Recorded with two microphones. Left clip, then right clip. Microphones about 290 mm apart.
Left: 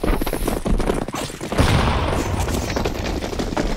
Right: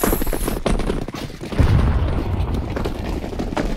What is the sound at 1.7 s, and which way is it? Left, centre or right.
Boom, left.